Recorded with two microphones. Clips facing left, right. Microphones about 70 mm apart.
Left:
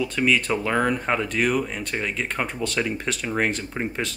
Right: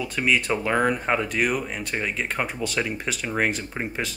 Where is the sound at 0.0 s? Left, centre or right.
Centre.